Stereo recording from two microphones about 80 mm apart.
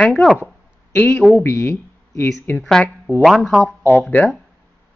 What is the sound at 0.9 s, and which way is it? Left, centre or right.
Speech, centre.